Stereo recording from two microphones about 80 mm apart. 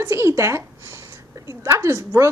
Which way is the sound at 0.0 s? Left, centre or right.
Right.